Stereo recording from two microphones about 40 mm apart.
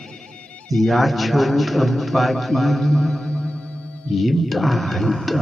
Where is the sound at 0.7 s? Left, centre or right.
Centre.